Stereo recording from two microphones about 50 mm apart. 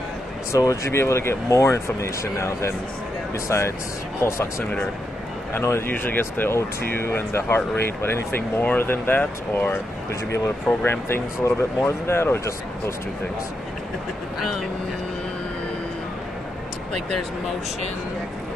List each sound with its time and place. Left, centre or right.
0.5 s speech: left
5.9 s speech: left